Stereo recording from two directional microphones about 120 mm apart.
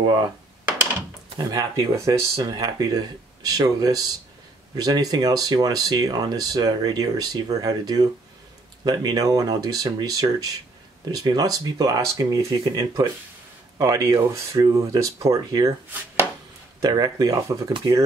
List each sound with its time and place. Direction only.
1.3 s speech: 35° right (ahead or behind)
16.8 s speech: 30° right (ahead or behind)